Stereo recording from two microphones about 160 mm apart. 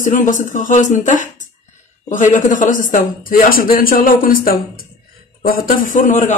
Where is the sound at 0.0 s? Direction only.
55° left (ahead or behind).